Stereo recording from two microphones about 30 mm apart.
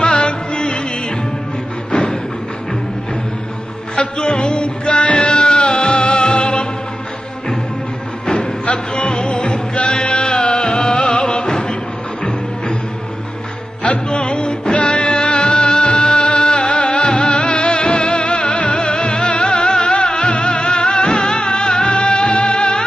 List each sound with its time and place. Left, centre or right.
0.0 s music: left
1.9 s music: left
3.9 s music: left
8.6 s music: left
13.8 s music: left